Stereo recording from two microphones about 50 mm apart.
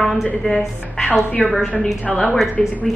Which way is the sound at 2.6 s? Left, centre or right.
Centre.